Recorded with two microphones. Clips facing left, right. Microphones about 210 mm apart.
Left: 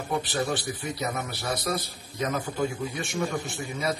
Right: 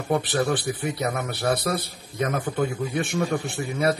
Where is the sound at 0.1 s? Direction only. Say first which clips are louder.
Right 5 dB; 55° right (ahead or behind).